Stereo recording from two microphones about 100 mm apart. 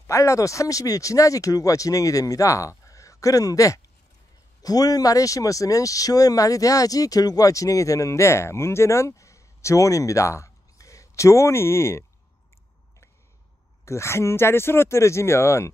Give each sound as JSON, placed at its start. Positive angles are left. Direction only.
{"t": 0.0, "sound": "speech", "side_deg": 30}
{"t": 13.8, "sound": "speech", "side_deg": 30}